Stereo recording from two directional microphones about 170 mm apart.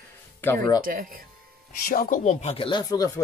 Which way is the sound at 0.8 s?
55° right (ahead or behind).